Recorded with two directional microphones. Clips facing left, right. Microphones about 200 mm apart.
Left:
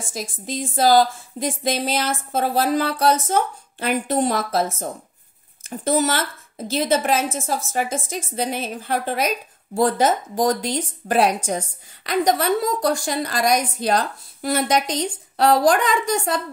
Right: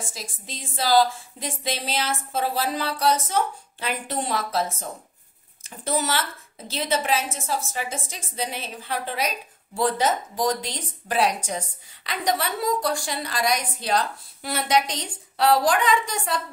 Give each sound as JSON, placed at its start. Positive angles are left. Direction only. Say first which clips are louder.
{"t": 0.1, "sound": "speech", "louder": "left 10 dB", "side_deg": 45}
{"t": 5.9, "sound": "speech", "louder": "left 5 dB", "side_deg": 45}